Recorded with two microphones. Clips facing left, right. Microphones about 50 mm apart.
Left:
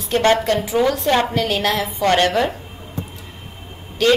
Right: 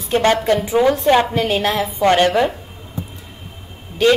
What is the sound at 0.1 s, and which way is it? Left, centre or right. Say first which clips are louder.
A woman's voice: right 1 dB; right.